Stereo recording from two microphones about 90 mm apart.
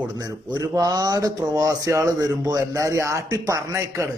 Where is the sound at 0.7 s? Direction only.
45° right (ahead or behind).